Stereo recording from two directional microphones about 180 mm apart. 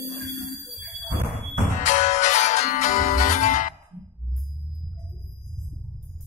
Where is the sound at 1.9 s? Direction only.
40° left (ahead or behind).